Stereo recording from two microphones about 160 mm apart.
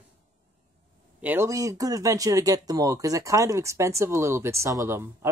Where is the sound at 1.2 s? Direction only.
15° right (ahead or behind).